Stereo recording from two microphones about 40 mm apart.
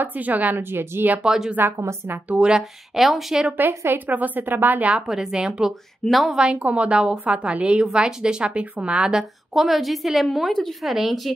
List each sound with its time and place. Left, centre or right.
0.0 s a woman's voice: right
0.6 s a woman's voice: right
1.2 s a woman's voice: centre
3.0 s a woman's voice: centre
3.5 s a woman's voice: right
4.1 s a woman's voice: right
5.1 s a woman's voice: centre
6.0 s a woman's voice: centre
6.3 s a woman's voice: right
7.8 s a woman's voice: centre
9.5 s a woman's voice: centre